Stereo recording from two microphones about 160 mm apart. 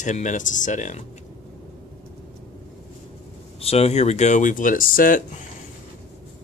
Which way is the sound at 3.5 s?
40° left (ahead or behind).